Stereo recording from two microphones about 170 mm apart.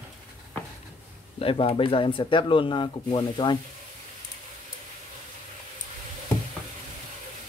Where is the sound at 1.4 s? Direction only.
30° left (ahead or behind).